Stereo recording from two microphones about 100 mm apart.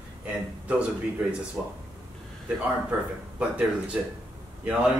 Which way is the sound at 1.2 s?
10° right (ahead or behind).